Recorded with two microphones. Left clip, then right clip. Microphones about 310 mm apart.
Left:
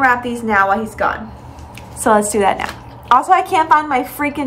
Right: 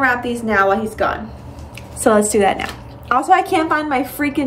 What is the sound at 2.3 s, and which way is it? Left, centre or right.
Speech, centre.